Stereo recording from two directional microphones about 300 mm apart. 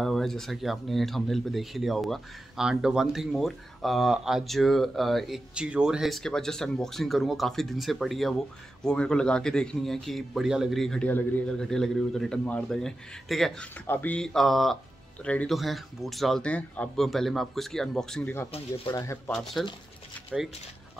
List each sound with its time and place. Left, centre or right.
0.0 s speech: centre